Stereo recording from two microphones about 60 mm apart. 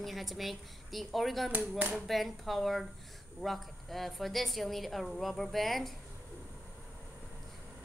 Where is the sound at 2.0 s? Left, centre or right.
Centre.